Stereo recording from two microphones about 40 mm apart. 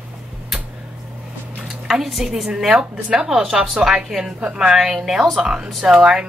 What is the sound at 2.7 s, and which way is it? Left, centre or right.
A woman's voice, right.